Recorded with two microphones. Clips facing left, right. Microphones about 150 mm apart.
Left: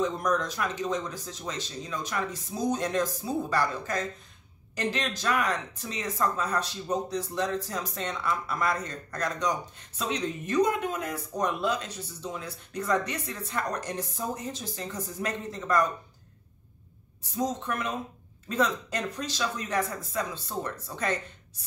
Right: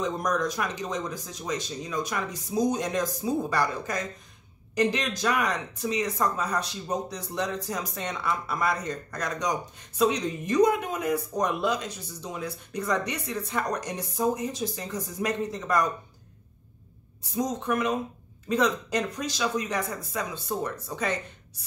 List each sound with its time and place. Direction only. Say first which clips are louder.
0.3 s speech: right 1 dB; 15° right (ahead or behind)
17.4 s speech: right 3 dB; 15° right (ahead or behind)